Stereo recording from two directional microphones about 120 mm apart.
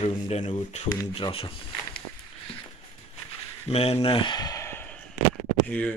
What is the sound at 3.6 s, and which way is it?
Speech, 55° left (ahead or behind).